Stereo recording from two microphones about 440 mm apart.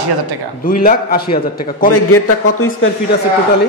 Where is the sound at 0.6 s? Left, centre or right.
Centre.